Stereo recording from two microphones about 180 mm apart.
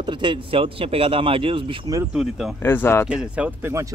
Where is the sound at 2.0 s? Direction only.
5° right (ahead or behind).